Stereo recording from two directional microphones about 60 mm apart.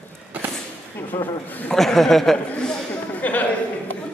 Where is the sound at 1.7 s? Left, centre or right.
Centre.